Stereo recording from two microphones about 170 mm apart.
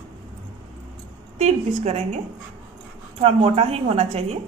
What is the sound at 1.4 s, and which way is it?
A woman's voice, 40° right (ahead or behind).